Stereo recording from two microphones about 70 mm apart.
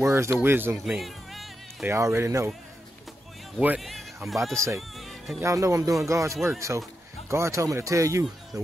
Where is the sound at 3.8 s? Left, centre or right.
Centre.